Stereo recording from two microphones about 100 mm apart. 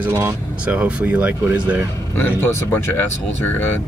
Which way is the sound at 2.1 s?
20° left (ahead or behind).